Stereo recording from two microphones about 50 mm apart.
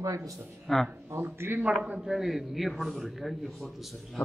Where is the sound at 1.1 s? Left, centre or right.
Right.